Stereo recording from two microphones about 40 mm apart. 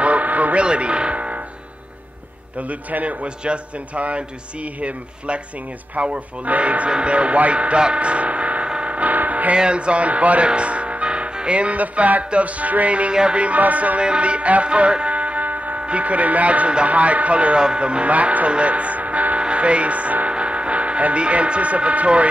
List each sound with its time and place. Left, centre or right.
0.0 s a sound: right
0.6 s music: right
2.7 s speech: right
8.6 s a sound: right
9.5 s speech: right
13.1 s music: right
13.4 s speech: right
14.0 s music: right
15.8 s speech: right